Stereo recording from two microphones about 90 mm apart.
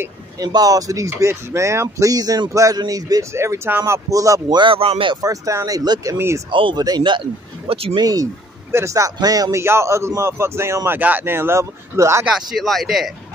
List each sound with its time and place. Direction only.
0.4 s speech: 45° right (ahead or behind)
4.6 s speech: 80° right
5.2 s speech: 40° right (ahead or behind)
6.1 s speech: 30° right (ahead or behind)
6.5 s speech: 70° right (ahead or behind); by 8.0 s 90° right
8.0 s speech: 45° right (ahead or behind)
9.6 s speech: 30° right (ahead or behind)
11.0 s speech: 20° right (ahead or behind)
12.4 s speech: centre (ahead or behind)